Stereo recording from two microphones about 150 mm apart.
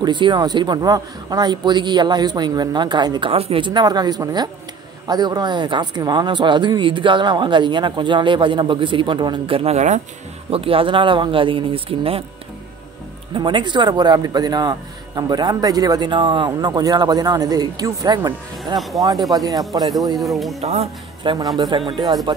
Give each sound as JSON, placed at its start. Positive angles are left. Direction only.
{"t": 0.0, "sound": "speech", "side_deg": -30}
{"t": 10.5, "sound": "speech", "side_deg": -40}
{"t": 13.3, "sound": "speech", "side_deg": -30}
{"t": 18.8, "sound": "speech", "side_deg": 0}
{"t": 19.0, "sound": "speech", "side_deg": -25}
{"t": 20.2, "sound": "speech", "side_deg": 0}
{"t": 20.6, "sound": "speech", "side_deg": -45}
{"t": 21.2, "sound": "speech", "side_deg": -30}